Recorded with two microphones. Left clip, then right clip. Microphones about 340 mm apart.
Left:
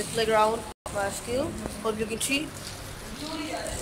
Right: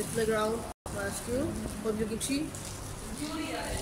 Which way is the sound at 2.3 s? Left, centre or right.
Left.